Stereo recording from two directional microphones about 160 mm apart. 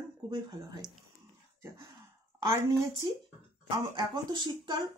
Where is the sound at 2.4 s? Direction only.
25° right (ahead or behind).